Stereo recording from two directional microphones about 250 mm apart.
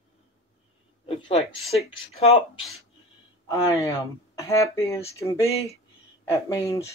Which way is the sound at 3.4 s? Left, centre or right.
Centre.